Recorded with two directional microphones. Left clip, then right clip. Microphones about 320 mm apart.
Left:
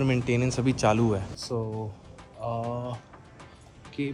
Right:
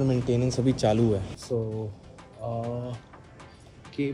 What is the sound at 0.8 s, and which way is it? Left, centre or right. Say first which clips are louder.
Speech: left 1 dB; centre.